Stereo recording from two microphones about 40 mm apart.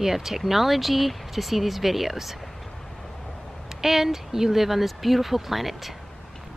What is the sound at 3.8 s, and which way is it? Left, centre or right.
Speech, centre.